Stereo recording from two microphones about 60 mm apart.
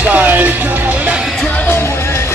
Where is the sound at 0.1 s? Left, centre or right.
Right.